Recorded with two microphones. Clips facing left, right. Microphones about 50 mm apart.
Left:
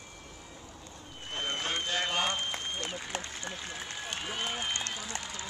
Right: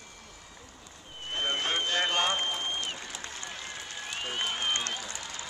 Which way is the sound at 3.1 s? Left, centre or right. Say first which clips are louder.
Left 4 dB; left.